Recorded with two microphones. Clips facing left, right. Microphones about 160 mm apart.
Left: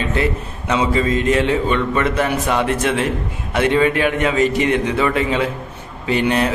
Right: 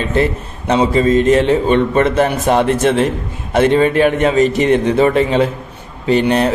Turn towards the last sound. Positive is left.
turn(degrees=-35)  # may be behind; listen again after turning